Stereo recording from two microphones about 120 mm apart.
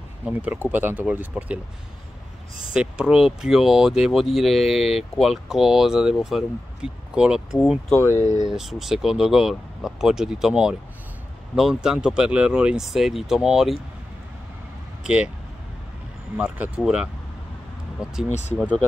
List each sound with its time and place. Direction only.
0.2 s speech: 10° right (ahead or behind)
2.7 s speech: 5° right (ahead or behind)
7.9 s speech: 25° left (ahead or behind)
8.2 s speech: 90° left
8.5 s speech: 5° right (ahead or behind)
15.0 s speech: 10° right (ahead or behind)
16.3 s speech: 10° right (ahead or behind)